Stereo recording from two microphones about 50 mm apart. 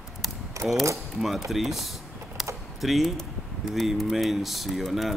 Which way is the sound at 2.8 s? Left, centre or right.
Centre.